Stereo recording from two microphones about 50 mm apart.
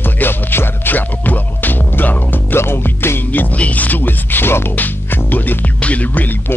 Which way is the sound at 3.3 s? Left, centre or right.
Left.